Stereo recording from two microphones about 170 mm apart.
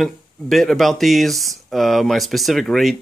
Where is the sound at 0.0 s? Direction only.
Centre (ahead or behind).